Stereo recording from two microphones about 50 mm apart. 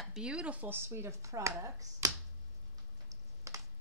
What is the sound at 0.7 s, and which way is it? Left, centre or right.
Speech, right.